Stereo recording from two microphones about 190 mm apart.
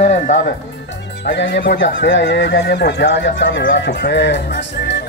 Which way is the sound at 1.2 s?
65° left (ahead or behind).